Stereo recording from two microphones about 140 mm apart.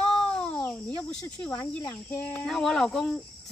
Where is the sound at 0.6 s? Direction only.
10° left (ahead or behind).